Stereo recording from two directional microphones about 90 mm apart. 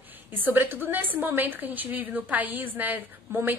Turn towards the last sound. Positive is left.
turn(degrees=-20)  # may be behind; listen again after turning